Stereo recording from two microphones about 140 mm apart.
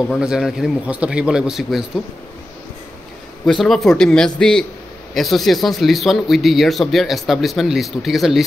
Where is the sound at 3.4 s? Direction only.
Centre (ahead or behind).